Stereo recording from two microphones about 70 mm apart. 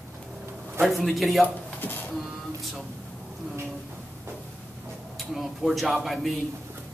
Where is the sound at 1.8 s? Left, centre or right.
Left.